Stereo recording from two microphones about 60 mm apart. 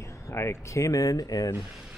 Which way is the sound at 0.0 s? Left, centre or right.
Left.